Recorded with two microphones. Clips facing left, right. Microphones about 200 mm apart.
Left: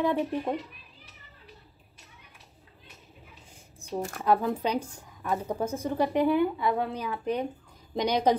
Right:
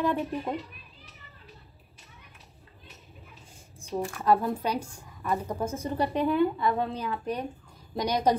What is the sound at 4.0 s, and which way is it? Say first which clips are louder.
Speech: right 1 dB; 40° left (ahead or behind).